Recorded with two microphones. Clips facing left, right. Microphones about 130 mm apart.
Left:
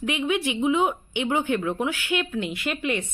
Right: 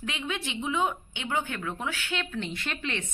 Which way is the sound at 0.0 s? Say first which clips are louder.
Left 9 dB; 15° left (ahead or behind).